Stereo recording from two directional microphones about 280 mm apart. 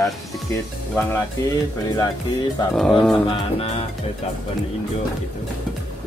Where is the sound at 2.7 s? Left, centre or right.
Centre.